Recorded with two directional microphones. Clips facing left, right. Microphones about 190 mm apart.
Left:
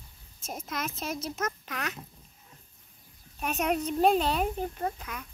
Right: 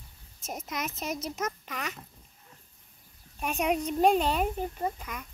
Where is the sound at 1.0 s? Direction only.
15° right (ahead or behind).